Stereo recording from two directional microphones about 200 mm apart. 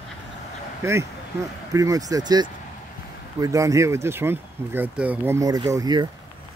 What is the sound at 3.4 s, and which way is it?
Speech, 15° right (ahead or behind).